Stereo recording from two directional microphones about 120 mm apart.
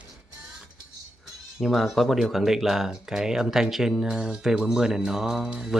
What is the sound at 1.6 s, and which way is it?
Speech, centre (ahead or behind).